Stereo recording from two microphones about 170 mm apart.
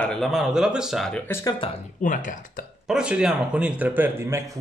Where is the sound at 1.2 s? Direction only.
15° left (ahead or behind).